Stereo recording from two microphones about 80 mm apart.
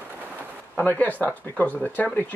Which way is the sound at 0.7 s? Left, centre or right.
Left.